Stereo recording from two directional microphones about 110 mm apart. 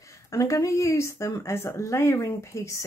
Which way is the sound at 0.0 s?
25° left (ahead or behind).